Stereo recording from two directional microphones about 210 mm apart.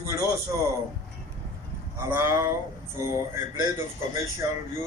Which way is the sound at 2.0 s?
10° right (ahead or behind).